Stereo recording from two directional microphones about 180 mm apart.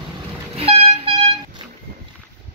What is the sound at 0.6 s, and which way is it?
Vehicle, 30° right (ahead or behind).